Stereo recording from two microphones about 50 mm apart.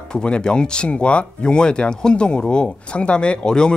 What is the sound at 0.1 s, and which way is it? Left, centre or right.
Speech, centre.